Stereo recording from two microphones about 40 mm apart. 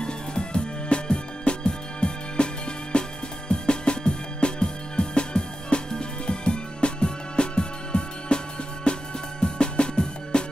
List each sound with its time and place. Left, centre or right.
0.0 s music: left